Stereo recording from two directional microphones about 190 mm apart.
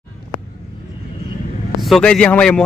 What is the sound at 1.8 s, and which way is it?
Speech, centre (ahead or behind).